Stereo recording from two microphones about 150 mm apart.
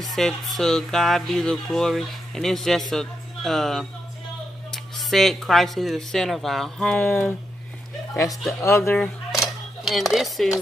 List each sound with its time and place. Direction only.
0.0 s speech: centre (ahead or behind)
8.5 s speech: 15° left (ahead or behind)
8.9 s dishes: 5° left (ahead or behind)